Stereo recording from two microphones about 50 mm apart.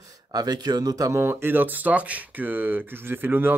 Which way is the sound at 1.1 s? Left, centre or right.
Right.